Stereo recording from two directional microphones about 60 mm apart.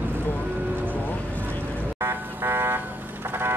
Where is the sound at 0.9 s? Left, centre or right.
Left.